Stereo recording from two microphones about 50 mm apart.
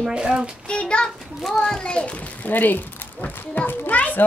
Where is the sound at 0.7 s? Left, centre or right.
Centre.